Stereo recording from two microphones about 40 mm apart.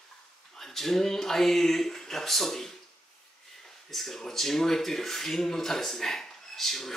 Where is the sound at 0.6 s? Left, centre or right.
Centre.